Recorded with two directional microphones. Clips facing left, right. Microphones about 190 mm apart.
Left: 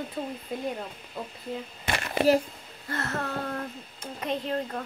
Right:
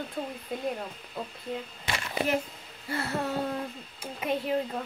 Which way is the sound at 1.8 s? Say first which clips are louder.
Left 3 dB; 55° left (ahead or behind).